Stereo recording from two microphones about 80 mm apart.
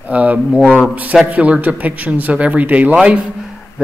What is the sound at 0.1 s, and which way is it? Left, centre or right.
A man's voice, centre.